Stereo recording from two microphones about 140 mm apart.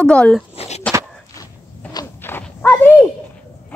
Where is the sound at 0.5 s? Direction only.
50° left (ahead or behind).